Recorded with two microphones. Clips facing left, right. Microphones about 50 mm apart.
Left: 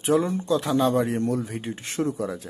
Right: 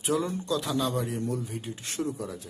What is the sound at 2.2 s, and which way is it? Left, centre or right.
Speech, left.